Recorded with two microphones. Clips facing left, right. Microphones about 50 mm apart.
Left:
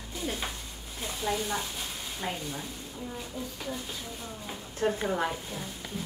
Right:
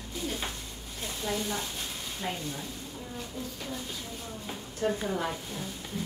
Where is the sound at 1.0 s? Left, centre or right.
Centre.